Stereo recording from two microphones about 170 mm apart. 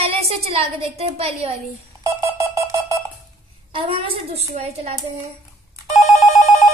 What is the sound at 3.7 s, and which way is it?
A woman's voice, 30° right (ahead or behind).